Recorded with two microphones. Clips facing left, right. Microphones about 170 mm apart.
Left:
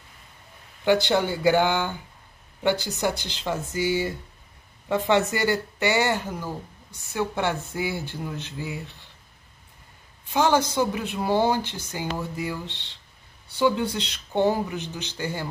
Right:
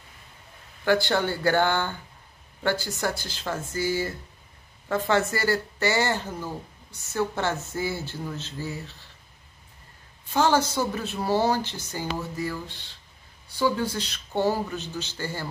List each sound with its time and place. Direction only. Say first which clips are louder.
0.8 s speech: left 2 dB; 20° left (ahead or behind)
10.3 s speech: left 1 dB; 15° left (ahead or behind)